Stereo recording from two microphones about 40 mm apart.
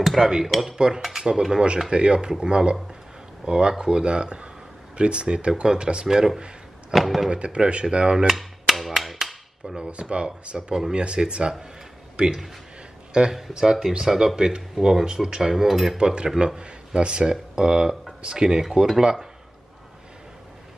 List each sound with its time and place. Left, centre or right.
0.0 s dishes: centre
0.5 s speech: centre
0.7 s speech: right
1.9 s speech: right
6.0 s speech: centre
6.9 s speech: centre
7.2 s speech: right
8.3 s hammer: centre
9.8 s speech: right
10.7 s speech: centre
11.0 s speech: right
15.5 s speech: centre
16.3 s speech: centre
18.6 s speech: centre